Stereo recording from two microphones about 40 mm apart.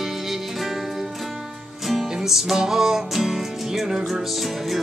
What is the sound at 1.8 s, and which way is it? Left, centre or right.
Music, centre.